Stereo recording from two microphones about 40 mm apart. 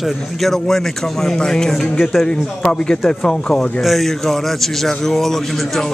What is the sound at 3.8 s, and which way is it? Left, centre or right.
Speech, centre.